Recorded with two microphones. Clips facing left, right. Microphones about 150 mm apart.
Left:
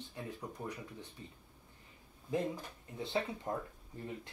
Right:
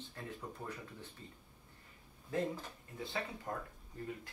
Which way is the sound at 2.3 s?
20° left (ahead or behind).